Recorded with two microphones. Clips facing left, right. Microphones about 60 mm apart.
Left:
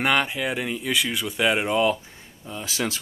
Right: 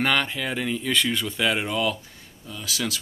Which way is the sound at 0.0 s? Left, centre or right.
Centre.